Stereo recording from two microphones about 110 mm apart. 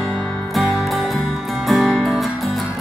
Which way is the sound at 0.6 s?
Centre (ahead or behind).